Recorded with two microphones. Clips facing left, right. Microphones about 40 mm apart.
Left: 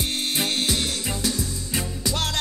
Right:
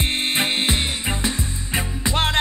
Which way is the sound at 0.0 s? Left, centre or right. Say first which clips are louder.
Right 4 dB; right.